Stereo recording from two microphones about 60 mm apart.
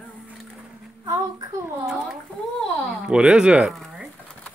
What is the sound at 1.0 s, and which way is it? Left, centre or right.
Speech, right.